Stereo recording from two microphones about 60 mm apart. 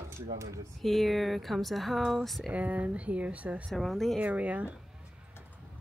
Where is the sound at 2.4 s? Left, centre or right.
Right.